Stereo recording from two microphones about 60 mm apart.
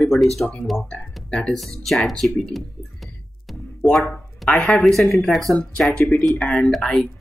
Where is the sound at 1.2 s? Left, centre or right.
Centre.